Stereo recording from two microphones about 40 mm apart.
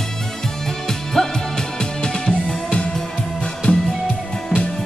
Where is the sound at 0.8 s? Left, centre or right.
Centre; by 3.8 s left.